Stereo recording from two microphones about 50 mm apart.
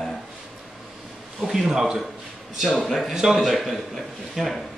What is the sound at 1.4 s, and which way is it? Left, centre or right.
A man's voice, centre.